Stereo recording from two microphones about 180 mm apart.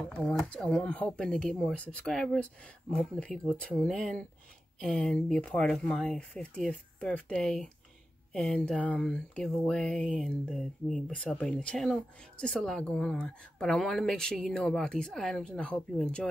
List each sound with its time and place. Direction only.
0.0 s speech: 5° left (ahead or behind)